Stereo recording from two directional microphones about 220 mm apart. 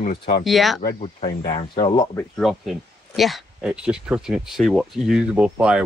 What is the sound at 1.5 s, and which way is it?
Speech, 20° left (ahead or behind).